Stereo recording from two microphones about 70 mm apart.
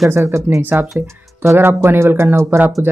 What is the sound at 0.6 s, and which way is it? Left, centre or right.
Speech, right.